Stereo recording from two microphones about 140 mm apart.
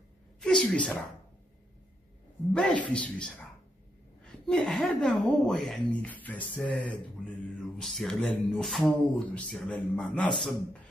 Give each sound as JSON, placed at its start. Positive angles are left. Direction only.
{"t": 0.4, "sound": "a sound", "side_deg": 5}
{"t": 2.5, "sound": "a woman's voice", "side_deg": 10}
{"t": 4.5, "sound": "speech", "side_deg": 5}